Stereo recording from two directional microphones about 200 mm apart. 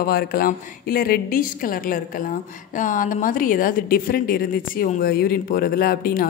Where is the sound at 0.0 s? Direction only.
50° left (ahead or behind).